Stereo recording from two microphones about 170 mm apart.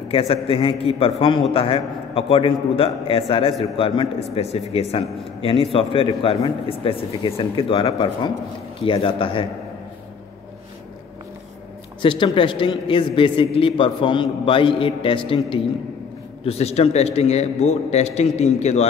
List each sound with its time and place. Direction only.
0.1 s a man's voice: 35° left (ahead or behind)
12.0 s a man's voice: 30° left (ahead or behind)